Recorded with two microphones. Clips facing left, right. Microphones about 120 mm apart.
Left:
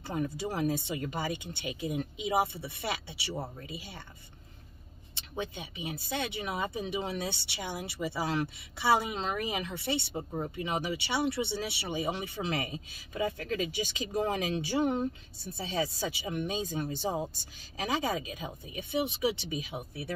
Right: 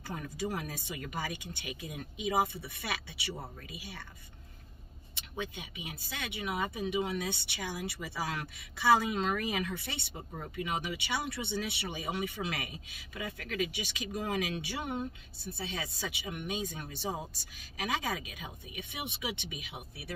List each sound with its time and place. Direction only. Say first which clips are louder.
0.0 s speech: left 4 dB; 25° left (ahead or behind)
5.3 s speech: left 3 dB; 30° left (ahead or behind)